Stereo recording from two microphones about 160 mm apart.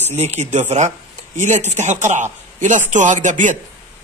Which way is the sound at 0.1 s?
45° right (ahead or behind).